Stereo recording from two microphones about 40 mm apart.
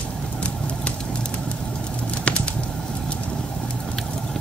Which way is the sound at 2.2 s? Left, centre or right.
Left.